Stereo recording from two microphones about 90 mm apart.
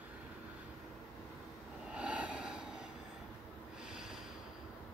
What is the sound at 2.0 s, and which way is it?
Snort, 15° right (ahead or behind).